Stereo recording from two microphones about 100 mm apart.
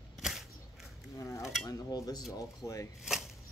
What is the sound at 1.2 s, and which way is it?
Speech, 30° left (ahead or behind).